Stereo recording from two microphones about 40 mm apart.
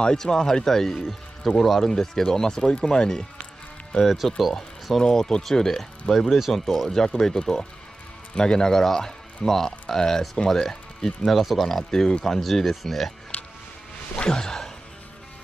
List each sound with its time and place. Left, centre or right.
0.0 s speech: centre
4.0 s speech: centre
5.0 s speech: centre
11.2 s speech: centre
14.1 s speech: left